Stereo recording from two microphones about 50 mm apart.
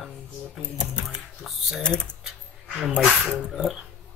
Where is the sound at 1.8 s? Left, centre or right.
Centre.